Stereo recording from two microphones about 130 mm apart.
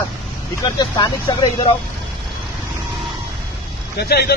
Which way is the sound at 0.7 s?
35° left (ahead or behind).